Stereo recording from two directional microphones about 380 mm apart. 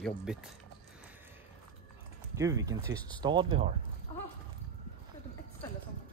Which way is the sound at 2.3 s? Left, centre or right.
Centre.